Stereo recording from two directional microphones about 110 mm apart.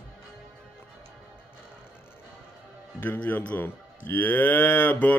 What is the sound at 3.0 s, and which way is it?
Speech, 20° left (ahead or behind).